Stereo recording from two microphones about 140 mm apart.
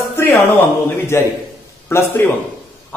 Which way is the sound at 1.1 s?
20° left (ahead or behind).